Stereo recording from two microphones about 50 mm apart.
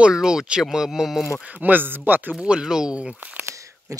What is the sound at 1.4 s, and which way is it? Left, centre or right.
Speech, right.